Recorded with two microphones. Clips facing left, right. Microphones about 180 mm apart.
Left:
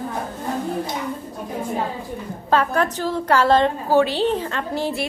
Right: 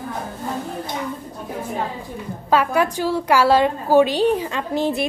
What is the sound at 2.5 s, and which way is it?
A woman's voice, 10° right (ahead or behind).